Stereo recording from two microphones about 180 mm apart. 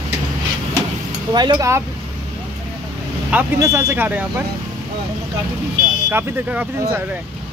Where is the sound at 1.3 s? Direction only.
25° right (ahead or behind).